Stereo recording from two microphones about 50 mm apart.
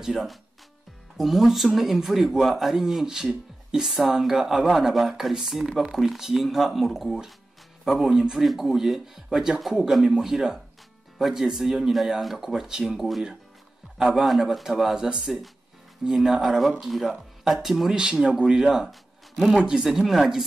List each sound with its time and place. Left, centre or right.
0.0 s speech: centre
19.9 s speech: centre